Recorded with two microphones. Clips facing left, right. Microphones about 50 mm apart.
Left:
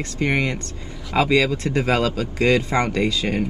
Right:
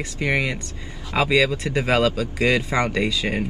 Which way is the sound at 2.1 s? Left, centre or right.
Left.